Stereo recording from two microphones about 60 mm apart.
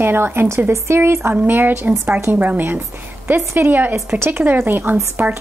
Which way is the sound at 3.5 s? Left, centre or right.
Right.